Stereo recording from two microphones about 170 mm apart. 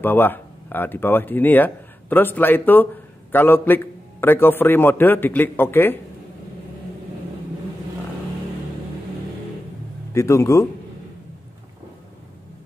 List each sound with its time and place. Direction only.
0.0 s speech: 10° left (ahead or behind)
10.1 s a man's voice: 15° left (ahead or behind)